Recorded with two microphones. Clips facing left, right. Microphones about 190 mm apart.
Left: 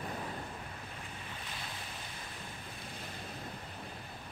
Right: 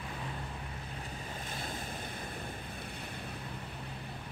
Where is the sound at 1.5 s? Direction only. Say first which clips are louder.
Right 6 dB; 45° right (ahead or behind).